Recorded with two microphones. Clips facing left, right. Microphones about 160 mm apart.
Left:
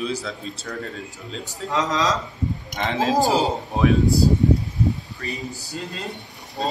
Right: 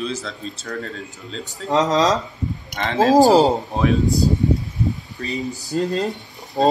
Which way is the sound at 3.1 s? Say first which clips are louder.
Right 9 dB; 40° right (ahead or behind).